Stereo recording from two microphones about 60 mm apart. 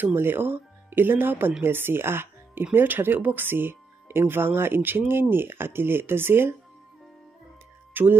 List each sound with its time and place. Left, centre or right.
0.0 s speech: right
7.9 s speech: right